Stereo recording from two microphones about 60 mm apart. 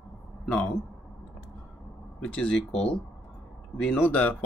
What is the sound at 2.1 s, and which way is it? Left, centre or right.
Speech, centre.